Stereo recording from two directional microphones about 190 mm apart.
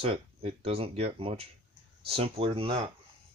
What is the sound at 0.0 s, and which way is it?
Speech, 30° right (ahead or behind).